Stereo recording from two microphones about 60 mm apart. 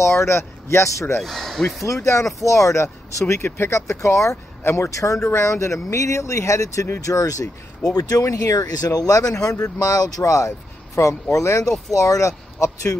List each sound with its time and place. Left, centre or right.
0.0 s speech: left
1.2 s speech: centre
1.9 s speech: left
4.0 s speech: left
8.3 s speech: left